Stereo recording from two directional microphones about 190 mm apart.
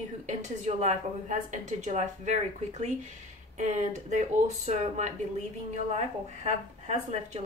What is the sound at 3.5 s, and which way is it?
A woman's voice, 40° right (ahead or behind).